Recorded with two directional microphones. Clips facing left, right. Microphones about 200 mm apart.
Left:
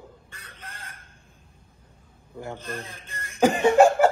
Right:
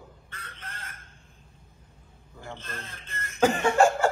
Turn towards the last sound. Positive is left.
turn(degrees=20)  # may be behind; listen again after turning